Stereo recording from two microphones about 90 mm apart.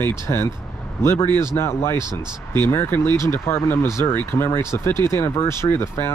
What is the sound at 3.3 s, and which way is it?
Speech, 30° left (ahead or behind).